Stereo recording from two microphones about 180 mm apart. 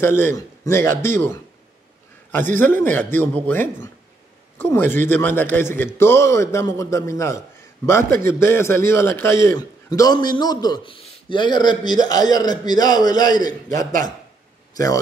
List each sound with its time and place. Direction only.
0.0 s a man's voice: 15° left (ahead or behind)
2.6 s a man's voice: 10° left (ahead or behind)
14.7 s a sound: 20° left (ahead or behind)